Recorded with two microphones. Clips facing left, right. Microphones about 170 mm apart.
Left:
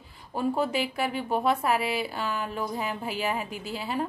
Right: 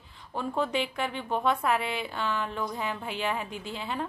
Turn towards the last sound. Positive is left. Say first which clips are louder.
# left 3 dB
turn(degrees=5)  # may be behind; listen again after turning